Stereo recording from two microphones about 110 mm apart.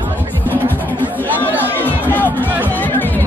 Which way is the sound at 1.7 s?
15° left (ahead or behind).